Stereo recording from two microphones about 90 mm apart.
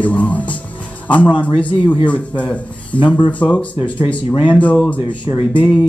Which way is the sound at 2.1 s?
15° left (ahead or behind).